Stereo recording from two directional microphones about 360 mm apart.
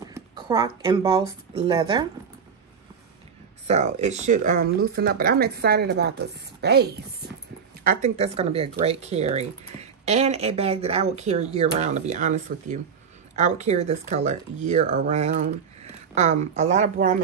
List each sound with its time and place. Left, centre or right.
0.0 s speech: centre
3.6 s speech: centre